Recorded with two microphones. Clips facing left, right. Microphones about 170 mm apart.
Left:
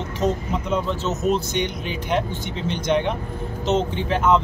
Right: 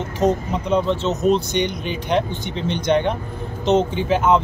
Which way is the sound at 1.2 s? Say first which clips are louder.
Right 4 dB; 5° left (ahead or behind).